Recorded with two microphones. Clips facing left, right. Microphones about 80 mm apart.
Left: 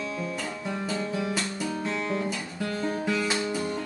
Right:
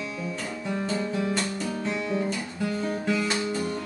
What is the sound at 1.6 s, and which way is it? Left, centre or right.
Guitar, centre.